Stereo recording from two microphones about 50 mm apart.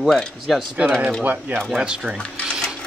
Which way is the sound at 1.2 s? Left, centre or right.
Right.